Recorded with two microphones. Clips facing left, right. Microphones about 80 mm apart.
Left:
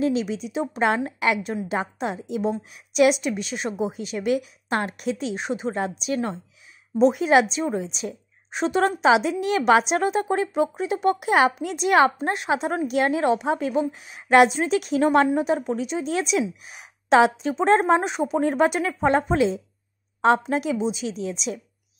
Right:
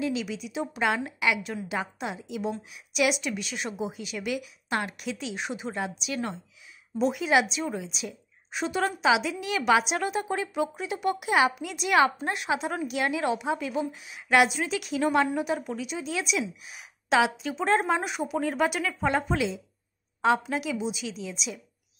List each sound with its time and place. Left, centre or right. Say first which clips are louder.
0.0 s a woman's voice: left 6 dB; left